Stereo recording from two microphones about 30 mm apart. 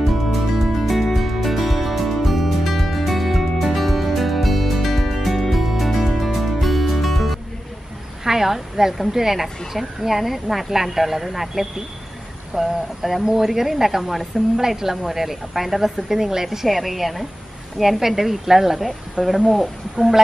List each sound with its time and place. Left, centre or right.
0.3 s music: centre
8.2 s a woman's voice: centre
16.4 s a woman's voice: centre
19.2 s speech: right
19.6 s a woman's voice: centre